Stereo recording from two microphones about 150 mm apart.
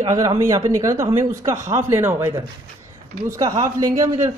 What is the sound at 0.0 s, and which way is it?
Speech, 25° right (ahead or behind).